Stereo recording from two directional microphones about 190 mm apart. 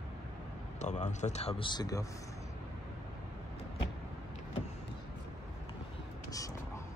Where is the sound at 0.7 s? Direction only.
40° left (ahead or behind); by 2.0 s 20° left (ahead or behind).